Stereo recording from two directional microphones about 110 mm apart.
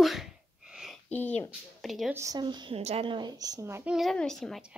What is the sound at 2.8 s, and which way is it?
Speech, 75° right (ahead or behind).